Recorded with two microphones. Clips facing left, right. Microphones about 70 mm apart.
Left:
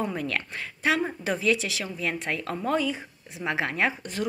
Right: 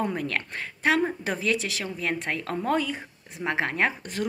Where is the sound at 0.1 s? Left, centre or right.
Right.